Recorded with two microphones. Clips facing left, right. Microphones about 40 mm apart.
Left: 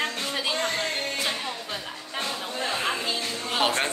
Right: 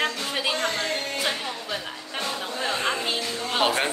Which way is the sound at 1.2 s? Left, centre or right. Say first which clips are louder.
Right 2 dB; centre.